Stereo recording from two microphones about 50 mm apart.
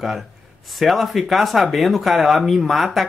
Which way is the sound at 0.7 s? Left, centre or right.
Centre.